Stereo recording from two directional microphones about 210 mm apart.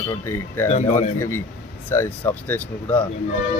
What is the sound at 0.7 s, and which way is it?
Speech, 35° left (ahead or behind).